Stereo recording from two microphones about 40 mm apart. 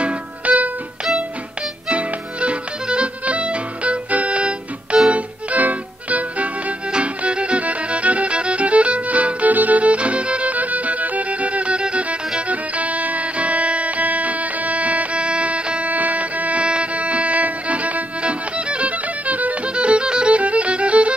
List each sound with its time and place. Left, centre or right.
0.0 s music: right
1.9 s music: right
5.1 s music: right
19.7 s music: right